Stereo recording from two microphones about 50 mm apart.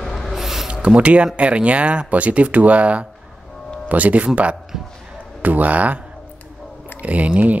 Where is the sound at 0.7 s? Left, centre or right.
Right.